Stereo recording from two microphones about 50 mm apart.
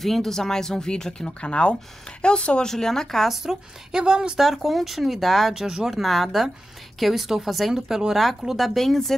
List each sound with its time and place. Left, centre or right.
0.0 s speech: centre
3.3 s speech: centre
4.4 s speech: centre
5.5 s speech: centre